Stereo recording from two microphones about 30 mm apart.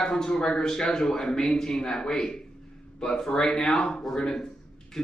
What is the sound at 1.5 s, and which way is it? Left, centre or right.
A man's voice, centre.